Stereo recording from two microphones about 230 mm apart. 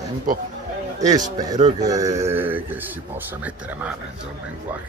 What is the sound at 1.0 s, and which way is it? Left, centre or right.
Speech, centre.